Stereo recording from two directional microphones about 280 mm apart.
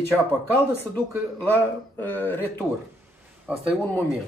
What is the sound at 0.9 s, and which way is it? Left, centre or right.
Speech, centre.